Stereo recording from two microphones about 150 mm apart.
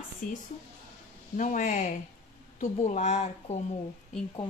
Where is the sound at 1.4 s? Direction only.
60° left (ahead or behind).